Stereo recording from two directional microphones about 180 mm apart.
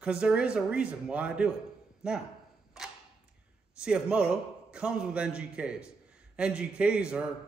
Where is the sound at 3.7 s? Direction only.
5° right (ahead or behind).